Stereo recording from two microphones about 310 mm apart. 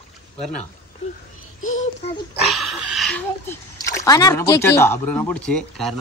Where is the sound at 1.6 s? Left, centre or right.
Left.